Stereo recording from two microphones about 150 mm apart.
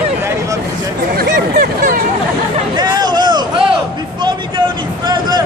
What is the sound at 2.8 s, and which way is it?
Hubbub, 30° right (ahead or behind).